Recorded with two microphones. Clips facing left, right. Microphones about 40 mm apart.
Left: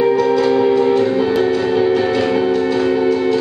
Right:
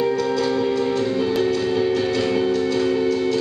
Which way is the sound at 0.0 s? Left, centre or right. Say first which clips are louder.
Left 7 dB; centre.